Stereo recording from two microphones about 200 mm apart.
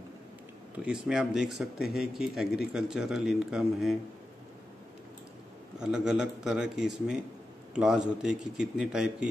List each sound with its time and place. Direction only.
1.0 s speech: centre (ahead or behind)
5.8 s speech: 5° right (ahead or behind)